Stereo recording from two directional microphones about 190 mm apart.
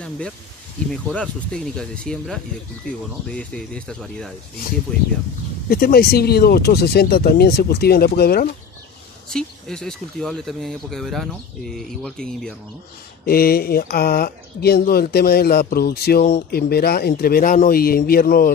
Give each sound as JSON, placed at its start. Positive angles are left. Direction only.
{"t": 1.0, "sound": "speech", "side_deg": 5}
{"t": 5.7, "sound": "speech", "side_deg": 50}
{"t": 9.3, "sound": "speech", "side_deg": 5}
{"t": 13.2, "sound": "speech", "side_deg": 50}